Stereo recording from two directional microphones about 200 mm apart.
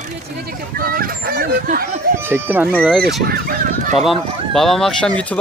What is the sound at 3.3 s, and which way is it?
Fowl, 45° right (ahead or behind).